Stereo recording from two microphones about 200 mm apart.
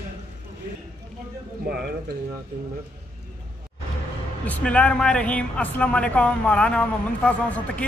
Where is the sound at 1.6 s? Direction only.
50° right (ahead or behind).